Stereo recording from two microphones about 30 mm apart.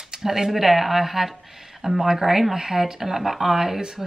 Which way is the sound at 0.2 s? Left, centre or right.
Centre.